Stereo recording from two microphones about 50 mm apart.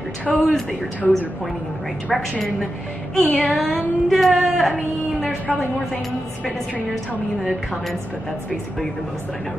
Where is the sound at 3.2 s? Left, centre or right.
Left.